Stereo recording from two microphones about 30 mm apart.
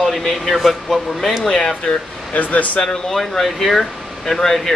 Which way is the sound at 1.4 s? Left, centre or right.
Left.